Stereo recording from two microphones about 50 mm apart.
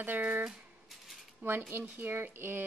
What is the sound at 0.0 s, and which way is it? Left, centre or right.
Speech, right.